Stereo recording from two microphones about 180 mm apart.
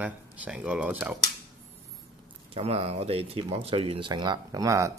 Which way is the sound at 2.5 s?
35° right (ahead or behind).